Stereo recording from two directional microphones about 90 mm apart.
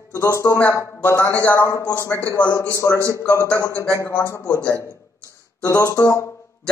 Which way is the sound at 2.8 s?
20° left (ahead or behind).